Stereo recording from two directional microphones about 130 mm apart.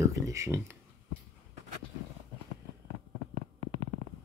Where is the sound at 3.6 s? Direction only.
50° right (ahead or behind).